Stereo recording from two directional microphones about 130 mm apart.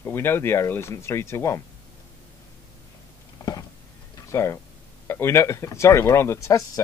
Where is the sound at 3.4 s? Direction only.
30° left (ahead or behind).